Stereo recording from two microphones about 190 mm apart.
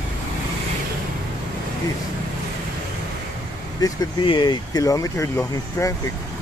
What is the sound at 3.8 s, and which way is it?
Speech, 25° left (ahead or behind).